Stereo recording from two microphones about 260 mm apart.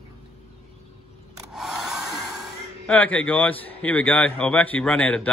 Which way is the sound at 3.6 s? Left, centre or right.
Centre.